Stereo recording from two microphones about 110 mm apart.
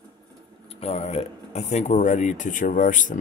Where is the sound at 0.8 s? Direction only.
70° left (ahead or behind); by 2.4 s 90° left.